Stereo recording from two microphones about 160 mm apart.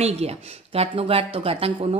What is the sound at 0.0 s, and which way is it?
Speech, 40° right (ahead or behind).